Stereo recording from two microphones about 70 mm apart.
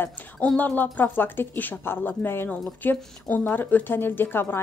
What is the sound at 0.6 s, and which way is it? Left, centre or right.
Speech, left.